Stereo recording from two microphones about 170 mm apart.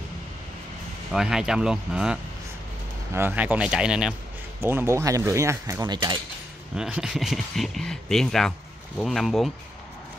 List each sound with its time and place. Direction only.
1.1 s speech: 5° right (ahead or behind)
3.2 s speech: 10° right (ahead or behind); by 6.1 s 25° right (ahead or behind)
6.7 s speech: 5° right (ahead or behind)